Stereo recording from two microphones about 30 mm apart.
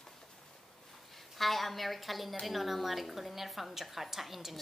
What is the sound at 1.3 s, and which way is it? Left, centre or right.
A woman's voice, centre.